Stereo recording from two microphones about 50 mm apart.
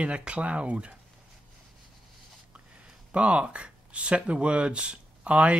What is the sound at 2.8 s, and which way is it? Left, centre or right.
Speech, right.